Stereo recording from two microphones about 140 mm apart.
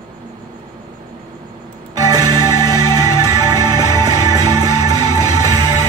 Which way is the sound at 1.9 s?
25° right (ahead or behind).